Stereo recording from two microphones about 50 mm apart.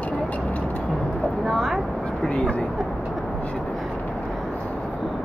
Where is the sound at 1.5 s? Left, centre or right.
Centre.